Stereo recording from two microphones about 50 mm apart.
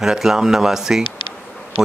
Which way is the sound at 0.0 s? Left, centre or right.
Centre.